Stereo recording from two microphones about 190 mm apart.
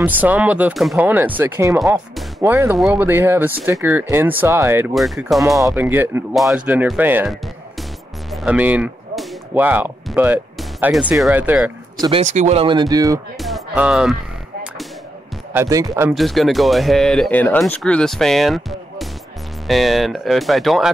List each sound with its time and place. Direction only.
0.0 s speech: 10° right (ahead or behind)
4.9 s speech: centre (ahead or behind)
5.8 s speech: 10° right (ahead or behind)
12.2 s speech: 35° right (ahead or behind); by 13.2 s 20° right (ahead or behind)
13.4 s music: centre (ahead or behind)
15.5 s speech: 15° right (ahead or behind)
16.1 s speech: centre (ahead or behind)